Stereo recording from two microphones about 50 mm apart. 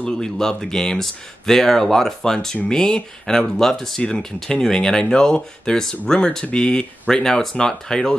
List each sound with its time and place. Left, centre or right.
0.0 s speech: centre